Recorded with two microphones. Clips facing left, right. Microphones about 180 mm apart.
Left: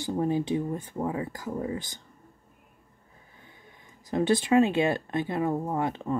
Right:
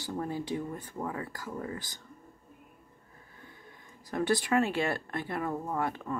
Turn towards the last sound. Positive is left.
turn(degrees=20)  # may be behind; listen again after turning